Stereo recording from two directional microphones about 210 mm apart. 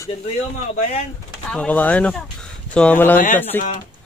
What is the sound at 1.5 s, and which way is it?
Speech, 5° left (ahead or behind).